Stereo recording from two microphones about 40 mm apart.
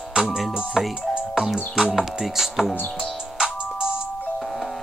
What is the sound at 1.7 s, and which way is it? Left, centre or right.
Music, centre.